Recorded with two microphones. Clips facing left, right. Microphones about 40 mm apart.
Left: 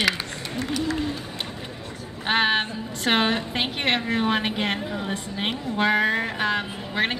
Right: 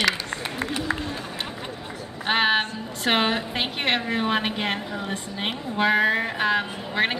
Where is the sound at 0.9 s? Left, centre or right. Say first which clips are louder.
Even; right.